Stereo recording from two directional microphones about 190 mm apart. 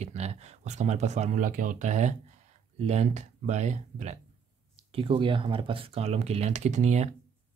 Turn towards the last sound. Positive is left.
turn(degrees=-35)  # may be behind; listen again after turning